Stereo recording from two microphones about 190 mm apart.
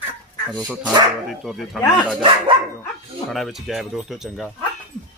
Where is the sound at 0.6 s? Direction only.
5° left (ahead or behind).